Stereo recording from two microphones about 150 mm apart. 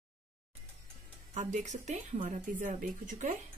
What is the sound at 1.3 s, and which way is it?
Speech, 55° right (ahead or behind).